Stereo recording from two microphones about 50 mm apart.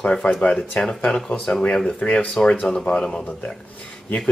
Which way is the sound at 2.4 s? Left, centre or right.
Centre.